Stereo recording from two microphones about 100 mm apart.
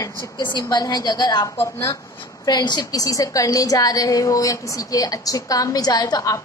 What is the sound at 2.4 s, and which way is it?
A woman's voice, 45° left (ahead or behind).